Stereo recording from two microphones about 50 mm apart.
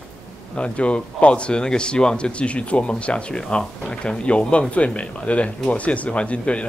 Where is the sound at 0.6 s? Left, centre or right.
Left.